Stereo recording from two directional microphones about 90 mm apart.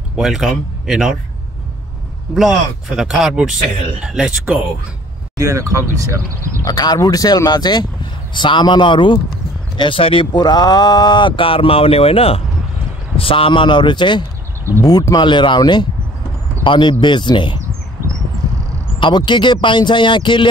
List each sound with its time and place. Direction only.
0.1 s speech: 5° right (ahead or behind)
3.0 s speech: 5° right (ahead or behind)
5.4 s speech: 35° right (ahead or behind)
6.6 s speech: 50° left (ahead or behind); by 9.2 s 65° left (ahead or behind)
9.8 s speech: 75° left (ahead or behind)
10.3 s speech: 50° left (ahead or behind)
14.8 s speech: 40° left (ahead or behind)
15.2 s speech: 60° left (ahead or behind)
16.6 s speech: 65° left (ahead or behind)
18.9 s speech: 60° left (ahead or behind)